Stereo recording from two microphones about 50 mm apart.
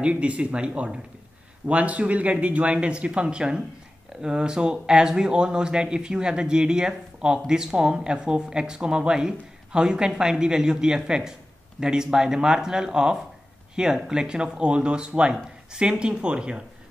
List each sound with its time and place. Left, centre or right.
0.0 s speech: right